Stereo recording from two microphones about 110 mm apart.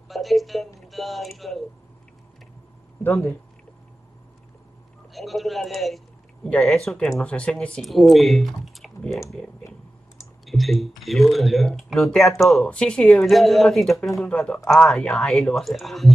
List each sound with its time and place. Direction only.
0.1 s a woman's voice: centre (ahead or behind)
3.0 s speech: 25° left (ahead or behind)
5.1 s a man's voice: centre (ahead or behind)
10.4 s speech: centre (ahead or behind)